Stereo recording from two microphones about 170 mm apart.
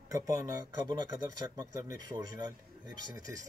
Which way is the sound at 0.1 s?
20° right (ahead or behind).